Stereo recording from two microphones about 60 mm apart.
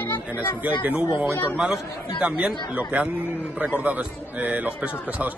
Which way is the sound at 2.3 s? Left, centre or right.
Centre.